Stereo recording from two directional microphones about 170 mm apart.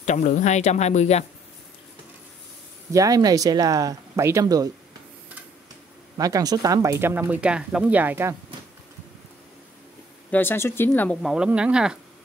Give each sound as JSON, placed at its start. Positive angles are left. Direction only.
{"t": 0.0, "sound": "speech", "side_deg": 45}
{"t": 2.9, "sound": "speech", "side_deg": -20}
{"t": 6.1, "sound": "speech", "side_deg": -20}
{"t": 10.3, "sound": "speech", "side_deg": 10}
{"t": 11.3, "sound": "speech", "side_deg": -5}